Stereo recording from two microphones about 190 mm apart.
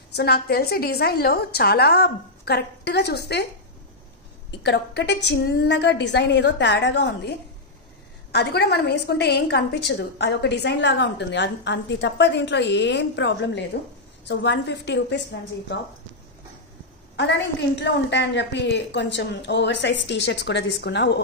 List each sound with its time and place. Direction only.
0.1 s a woman's voice: 60° left (ahead or behind)
4.6 s a woman's voice: 65° left (ahead or behind)
17.7 s a woman's voice: 65° left (ahead or behind)